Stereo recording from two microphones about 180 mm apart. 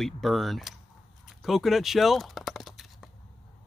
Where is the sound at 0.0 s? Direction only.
Centre (ahead or behind).